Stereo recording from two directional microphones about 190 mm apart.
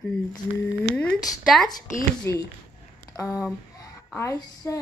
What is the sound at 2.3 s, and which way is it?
A child's voice, 15° left (ahead or behind).